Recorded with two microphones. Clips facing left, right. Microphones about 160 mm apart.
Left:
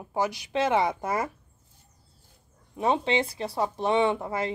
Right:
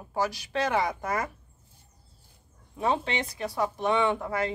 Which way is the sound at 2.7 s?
20° left (ahead or behind).